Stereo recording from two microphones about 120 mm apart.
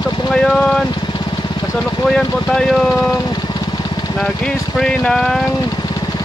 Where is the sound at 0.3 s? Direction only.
5° left (ahead or behind).